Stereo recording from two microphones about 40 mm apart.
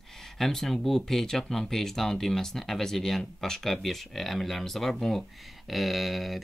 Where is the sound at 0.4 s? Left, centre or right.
Centre.